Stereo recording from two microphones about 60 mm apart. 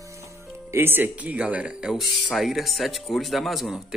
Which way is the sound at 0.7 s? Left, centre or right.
Right.